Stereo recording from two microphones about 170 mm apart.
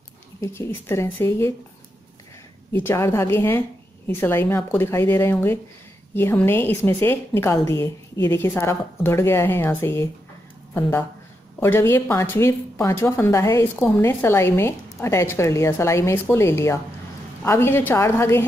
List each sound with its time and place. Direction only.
0.4 s a woman's voice: 15° left (ahead or behind)
2.7 s a woman's voice: 15° left (ahead or behind)